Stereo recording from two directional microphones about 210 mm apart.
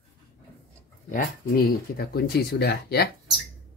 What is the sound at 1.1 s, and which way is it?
Speech, 45° left (ahead or behind).